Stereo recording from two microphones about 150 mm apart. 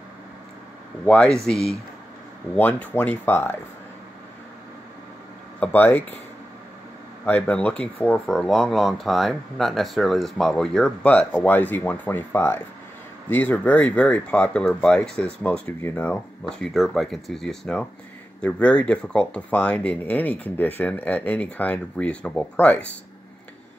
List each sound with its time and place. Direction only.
1.0 s speech: 5° left (ahead or behind)
5.6 s speech: 15° left (ahead or behind)
7.2 s speech: 10° left (ahead or behind)